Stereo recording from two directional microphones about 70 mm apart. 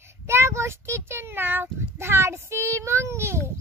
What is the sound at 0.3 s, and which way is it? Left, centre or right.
A child's voice, right.